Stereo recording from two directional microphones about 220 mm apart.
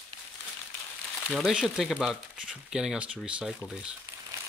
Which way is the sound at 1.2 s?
Centre (ahead or behind).